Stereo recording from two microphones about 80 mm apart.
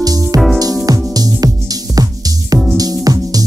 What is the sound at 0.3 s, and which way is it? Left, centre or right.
Music, right.